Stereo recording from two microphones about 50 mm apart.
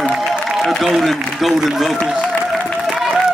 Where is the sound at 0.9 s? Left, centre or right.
Centre.